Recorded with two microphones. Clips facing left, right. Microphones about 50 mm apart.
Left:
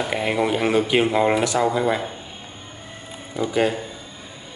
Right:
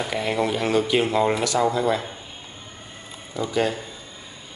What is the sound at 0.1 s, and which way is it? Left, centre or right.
A man's voice, left.